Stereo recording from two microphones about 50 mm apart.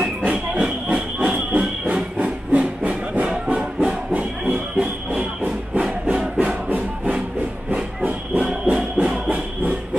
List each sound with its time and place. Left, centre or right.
0.3 s train: right
3.4 s music: right
7.7 s hiss: right
8.7 s music: right